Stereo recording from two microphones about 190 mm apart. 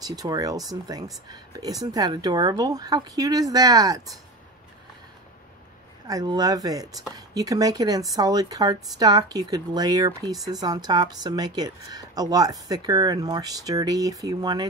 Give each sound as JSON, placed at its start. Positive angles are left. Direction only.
{"t": 0.0, "sound": "speech", "side_deg": -20}
{"t": 6.0, "sound": "speech", "side_deg": -20}